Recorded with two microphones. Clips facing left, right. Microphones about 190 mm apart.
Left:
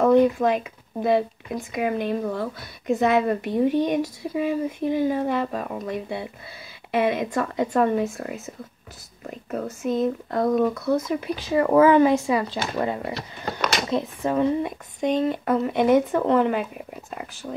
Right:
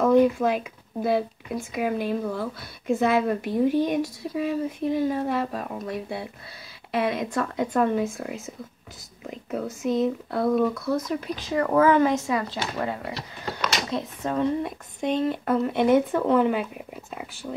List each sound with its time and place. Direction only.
0.0 s speech: 5° right (ahead or behind); by 12.5 s 15° left (ahead or behind)
13.1 s speech: 50° left (ahead or behind)
13.8 s speech: 15° left (ahead or behind)
15.0 s speech: centre (ahead or behind)